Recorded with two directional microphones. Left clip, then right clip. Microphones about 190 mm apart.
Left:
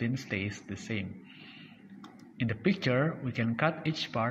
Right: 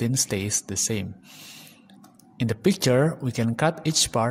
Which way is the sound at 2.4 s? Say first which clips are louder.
Right 7 dB; 60° right (ahead or behind).